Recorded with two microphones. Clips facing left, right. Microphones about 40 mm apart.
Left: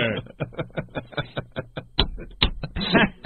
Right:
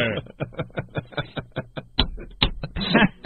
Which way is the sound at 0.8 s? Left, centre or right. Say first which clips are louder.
Right 1 dB; centre.